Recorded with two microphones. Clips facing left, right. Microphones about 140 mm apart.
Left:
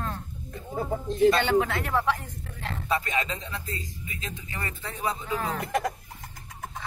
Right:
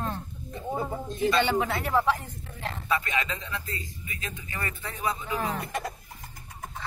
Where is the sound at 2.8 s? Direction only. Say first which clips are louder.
Left 1 dB; 35° left (ahead or behind).